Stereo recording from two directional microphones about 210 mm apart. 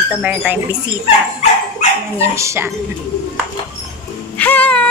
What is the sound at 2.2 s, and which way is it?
Speech, 15° right (ahead or behind).